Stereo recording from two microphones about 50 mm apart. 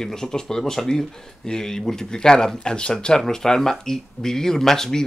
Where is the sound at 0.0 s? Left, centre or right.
Centre.